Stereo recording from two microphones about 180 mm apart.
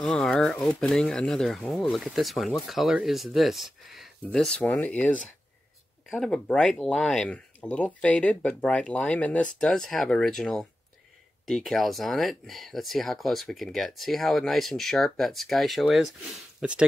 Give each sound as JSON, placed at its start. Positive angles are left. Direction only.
{"t": 0.0, "sound": "speech", "side_deg": 5}